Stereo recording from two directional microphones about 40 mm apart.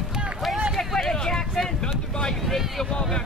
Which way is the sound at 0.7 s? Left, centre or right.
Centre.